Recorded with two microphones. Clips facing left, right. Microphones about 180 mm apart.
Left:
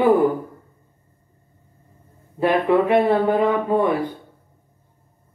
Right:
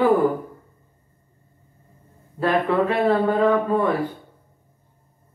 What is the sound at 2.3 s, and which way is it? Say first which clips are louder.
Speech: left 3 dB; 15° left (ahead or behind).